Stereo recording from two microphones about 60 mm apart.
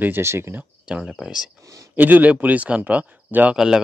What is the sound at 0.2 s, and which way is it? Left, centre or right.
Speech, right.